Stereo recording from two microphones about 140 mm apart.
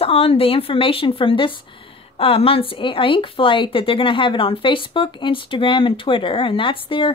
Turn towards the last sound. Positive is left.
turn(degrees=35)  # may be behind; listen again after turning